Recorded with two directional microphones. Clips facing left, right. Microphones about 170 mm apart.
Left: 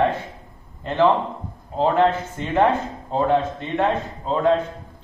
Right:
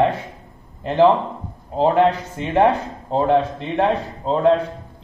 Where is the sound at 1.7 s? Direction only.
35° right (ahead or behind).